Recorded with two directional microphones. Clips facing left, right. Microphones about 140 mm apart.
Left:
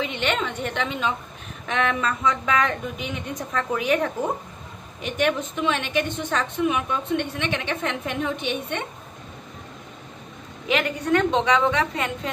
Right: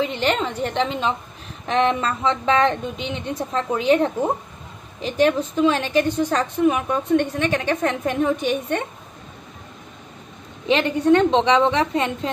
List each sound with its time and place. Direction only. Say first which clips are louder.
0.0 s a woman's voice: right 4 dB; 35° right (ahead or behind)
10.7 s a woman's voice: right 6 dB; 30° right (ahead or behind)